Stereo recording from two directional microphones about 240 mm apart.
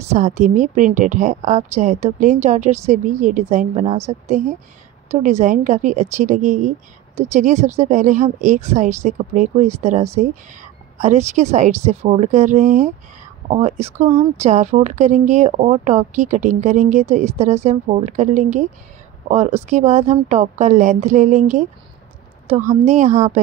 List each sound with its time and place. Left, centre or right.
0.1 s a woman's voice: right